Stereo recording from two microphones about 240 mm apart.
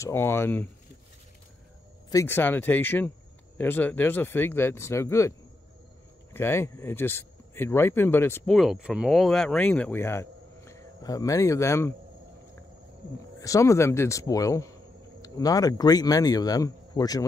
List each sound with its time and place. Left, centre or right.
0.0 s speech: centre
2.0 s speech: centre
6.3 s a man's voice: centre
13.4 s speech: centre